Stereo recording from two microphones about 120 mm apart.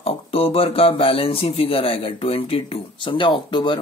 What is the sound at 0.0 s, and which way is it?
A man's voice, 55° left (ahead or behind).